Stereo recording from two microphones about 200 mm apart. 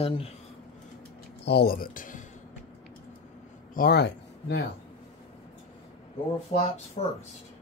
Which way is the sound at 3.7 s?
50° left (ahead or behind).